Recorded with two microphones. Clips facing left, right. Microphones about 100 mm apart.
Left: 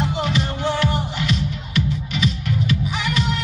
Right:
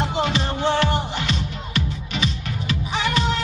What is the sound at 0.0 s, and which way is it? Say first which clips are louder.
Music: even; 30° right (ahead or behind).